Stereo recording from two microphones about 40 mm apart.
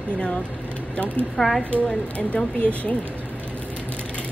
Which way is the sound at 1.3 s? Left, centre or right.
Centre.